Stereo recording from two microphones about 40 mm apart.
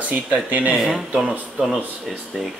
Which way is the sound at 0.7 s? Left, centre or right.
Centre.